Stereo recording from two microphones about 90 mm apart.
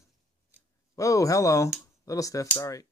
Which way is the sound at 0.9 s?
35° left (ahead or behind).